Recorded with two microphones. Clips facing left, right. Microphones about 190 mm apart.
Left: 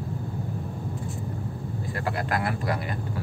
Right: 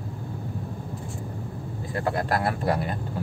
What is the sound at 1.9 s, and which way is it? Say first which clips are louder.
Speech: right 4 dB; 30° right (ahead or behind).